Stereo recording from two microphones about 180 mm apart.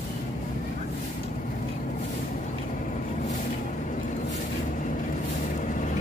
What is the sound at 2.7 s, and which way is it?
Vehicle, 45° left (ahead or behind).